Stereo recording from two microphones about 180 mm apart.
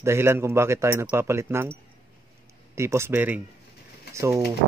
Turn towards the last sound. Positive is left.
turn(degrees=-15)  # may be behind; listen again after turning